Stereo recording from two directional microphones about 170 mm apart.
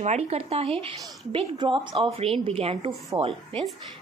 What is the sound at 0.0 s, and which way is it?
A woman's voice, 40° right (ahead or behind).